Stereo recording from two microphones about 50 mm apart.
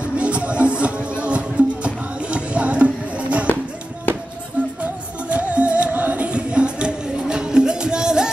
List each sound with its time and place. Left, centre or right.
0.0 s music: right
5.3 s music: right